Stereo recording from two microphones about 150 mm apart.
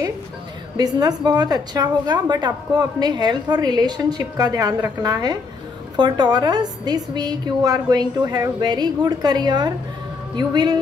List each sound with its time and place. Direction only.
0.7 s a woman's voice: 25° right (ahead or behind)